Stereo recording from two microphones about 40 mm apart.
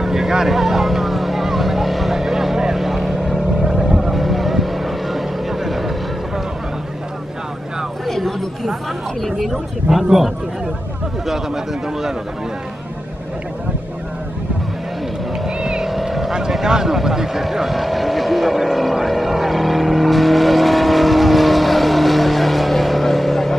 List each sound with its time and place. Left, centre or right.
0.0 s vehicle: centre
8.1 s chatter: centre
9.5 s speech: centre
15.6 s boat: centre
15.9 s vehicle: centre
16.5 s speech: centre
19.0 s vehicle: centre